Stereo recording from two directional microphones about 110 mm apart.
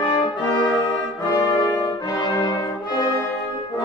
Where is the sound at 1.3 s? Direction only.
40° left (ahead or behind).